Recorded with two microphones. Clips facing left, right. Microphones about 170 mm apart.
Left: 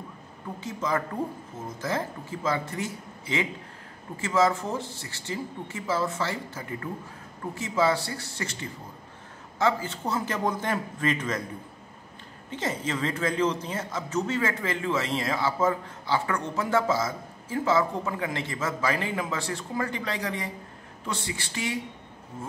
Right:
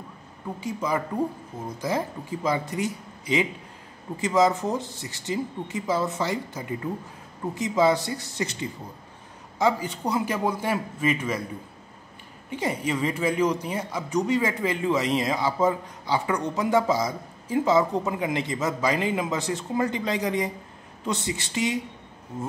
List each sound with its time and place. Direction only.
0.6 s a man's voice: 10° right (ahead or behind)
12.4 s a man's voice: 10° right (ahead or behind)